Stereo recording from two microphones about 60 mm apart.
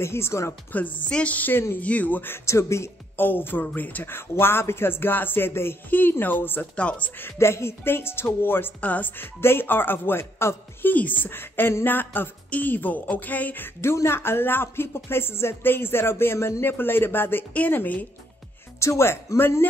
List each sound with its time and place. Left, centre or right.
0.0 s speech: left
0.7 s a woman's voice: left
2.4 s speech: left
3.2 s speech: left
6.8 s a woman's voice: left
7.2 s a woman's voice: left
9.4 s a woman's voice: left
13.9 s speech: left
18.8 s speech: left